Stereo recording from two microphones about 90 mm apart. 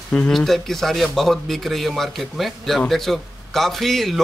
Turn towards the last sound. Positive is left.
turn(degrees=0)  # may be behind; listen again after turning